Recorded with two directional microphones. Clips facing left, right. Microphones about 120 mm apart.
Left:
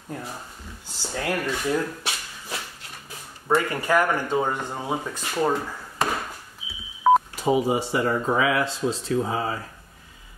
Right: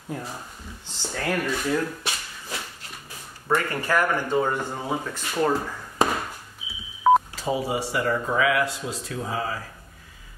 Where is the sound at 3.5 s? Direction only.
15° left (ahead or behind).